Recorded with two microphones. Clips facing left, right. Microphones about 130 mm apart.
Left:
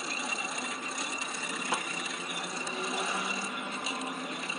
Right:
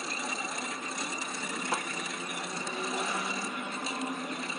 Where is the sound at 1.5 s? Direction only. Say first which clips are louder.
Even; centre (ahead or behind).